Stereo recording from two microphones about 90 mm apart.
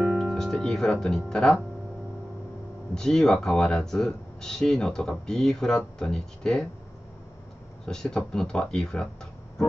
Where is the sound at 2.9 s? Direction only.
5° left (ahead or behind).